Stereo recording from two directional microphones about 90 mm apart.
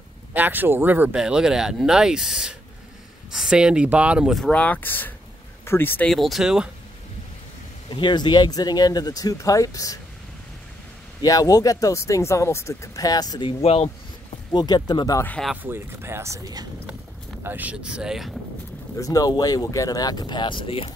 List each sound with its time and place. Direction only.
0.3 s speech: 20° right (ahead or behind)
1.1 s speech: 10° right (ahead or behind)
4.5 s speech: 15° left (ahead or behind)
6.0 s speech: centre (ahead or behind)
7.9 s speech: 55° left (ahead or behind); by 9.9 s 40° left (ahead or behind)
11.2 s speech: 40° left (ahead or behind)
14.5 s speech: 55° left (ahead or behind)
15.5 s speech: 25° right (ahead or behind)
17.4 s speech: 20° right (ahead or behind); by 18.4 s 5° right (ahead or behind)
18.9 s speech: 40° left (ahead or behind); by 20.9 s 90° left